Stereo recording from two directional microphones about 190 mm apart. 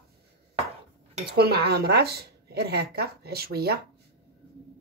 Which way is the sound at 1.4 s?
60° right (ahead or behind).